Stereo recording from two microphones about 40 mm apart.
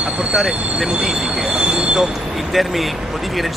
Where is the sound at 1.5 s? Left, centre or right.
Right.